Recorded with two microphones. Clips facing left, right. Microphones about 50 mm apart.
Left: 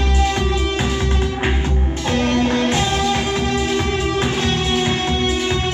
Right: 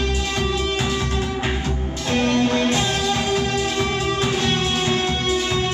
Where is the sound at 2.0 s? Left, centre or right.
Left.